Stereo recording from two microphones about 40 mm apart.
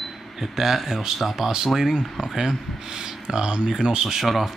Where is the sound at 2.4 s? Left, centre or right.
Centre.